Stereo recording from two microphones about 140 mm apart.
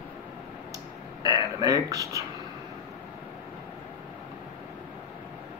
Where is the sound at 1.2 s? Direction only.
25° right (ahead or behind).